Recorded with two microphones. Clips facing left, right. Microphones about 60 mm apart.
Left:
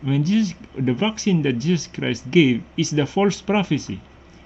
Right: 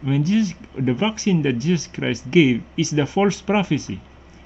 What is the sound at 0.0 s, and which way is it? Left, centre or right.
Speech, centre.